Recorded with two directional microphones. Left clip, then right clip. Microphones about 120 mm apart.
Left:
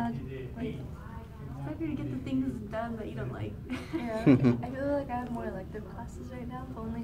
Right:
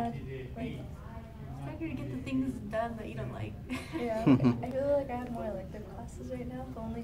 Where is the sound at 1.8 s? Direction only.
30° right (ahead or behind).